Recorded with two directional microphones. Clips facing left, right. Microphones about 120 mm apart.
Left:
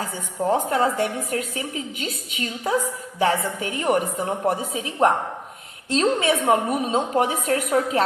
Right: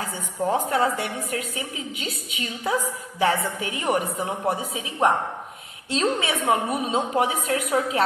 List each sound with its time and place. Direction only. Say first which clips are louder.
0.5 s a woman's voice: left 2 dB; 40° left (ahead or behind)